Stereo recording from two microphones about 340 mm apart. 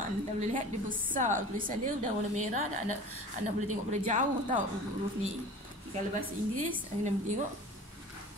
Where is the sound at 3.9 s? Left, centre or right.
Right.